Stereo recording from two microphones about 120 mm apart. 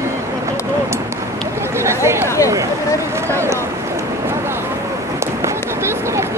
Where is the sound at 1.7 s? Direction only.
20° right (ahead or behind).